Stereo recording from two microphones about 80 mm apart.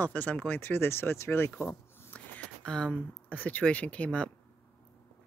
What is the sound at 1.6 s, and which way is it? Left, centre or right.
Zipper, left.